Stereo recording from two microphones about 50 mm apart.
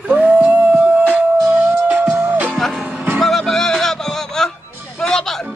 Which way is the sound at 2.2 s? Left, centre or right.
Right.